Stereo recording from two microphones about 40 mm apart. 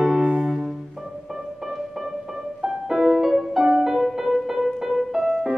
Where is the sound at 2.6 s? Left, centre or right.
Centre.